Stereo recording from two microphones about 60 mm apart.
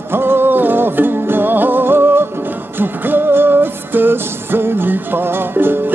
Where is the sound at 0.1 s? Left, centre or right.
Right.